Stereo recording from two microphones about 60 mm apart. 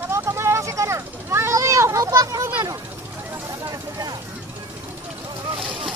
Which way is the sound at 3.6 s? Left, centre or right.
Right.